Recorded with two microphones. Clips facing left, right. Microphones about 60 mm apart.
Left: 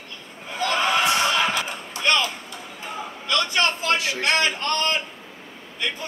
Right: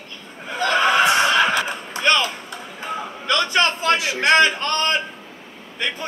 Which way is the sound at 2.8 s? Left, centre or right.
Right.